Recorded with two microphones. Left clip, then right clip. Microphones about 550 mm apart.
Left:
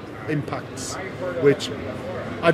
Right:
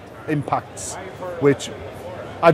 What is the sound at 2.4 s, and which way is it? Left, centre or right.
Speech, right.